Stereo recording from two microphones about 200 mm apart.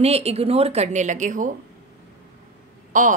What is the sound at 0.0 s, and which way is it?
A woman's voice, 30° right (ahead or behind).